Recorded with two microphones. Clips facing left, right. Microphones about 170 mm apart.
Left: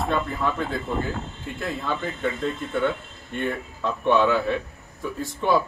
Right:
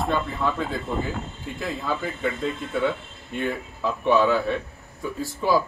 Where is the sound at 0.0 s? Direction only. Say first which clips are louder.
Even; centre (ahead or behind).